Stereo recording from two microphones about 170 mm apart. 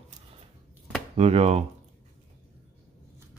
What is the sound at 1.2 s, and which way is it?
Speech, 40° right (ahead or behind).